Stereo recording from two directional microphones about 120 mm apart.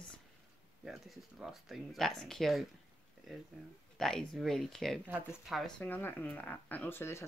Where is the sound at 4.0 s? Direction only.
5° left (ahead or behind).